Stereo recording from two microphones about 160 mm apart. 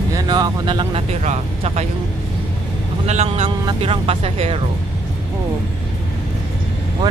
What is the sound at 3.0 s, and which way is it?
Speech, 45° right (ahead or behind).